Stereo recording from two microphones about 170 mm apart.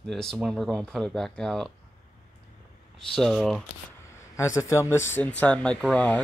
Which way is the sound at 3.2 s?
Centre (ahead or behind).